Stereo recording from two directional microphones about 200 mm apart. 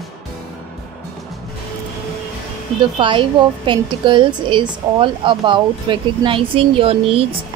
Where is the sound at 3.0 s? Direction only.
25° right (ahead or behind).